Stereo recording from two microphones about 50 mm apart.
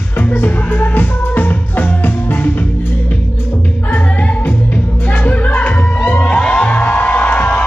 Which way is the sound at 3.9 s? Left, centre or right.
Left.